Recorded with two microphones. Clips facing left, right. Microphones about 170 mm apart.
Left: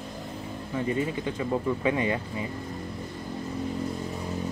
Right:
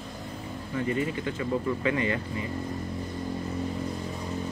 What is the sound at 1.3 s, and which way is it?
Speech, 15° left (ahead or behind).